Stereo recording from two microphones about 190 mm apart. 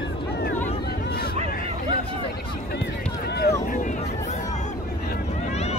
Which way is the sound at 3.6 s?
45° left (ahead or behind).